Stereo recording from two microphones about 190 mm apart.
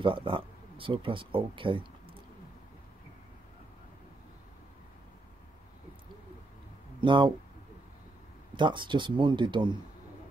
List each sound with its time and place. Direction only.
0.0 s speech: 25° right (ahead or behind)
7.0 s speech: 25° right (ahead or behind)
8.5 s speech: 25° right (ahead or behind)